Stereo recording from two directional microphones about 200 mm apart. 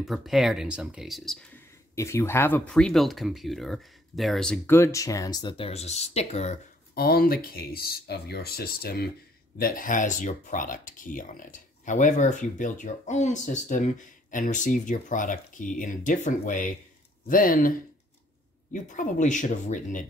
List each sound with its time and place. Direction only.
0.0 s speech: centre (ahead or behind)
2.0 s speech: 15° left (ahead or behind); by 6.6 s 35° left (ahead or behind)
7.0 s speech: 50° left (ahead or behind)